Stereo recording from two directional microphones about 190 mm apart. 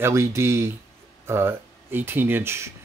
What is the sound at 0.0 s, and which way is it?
Speech, 15° right (ahead or behind).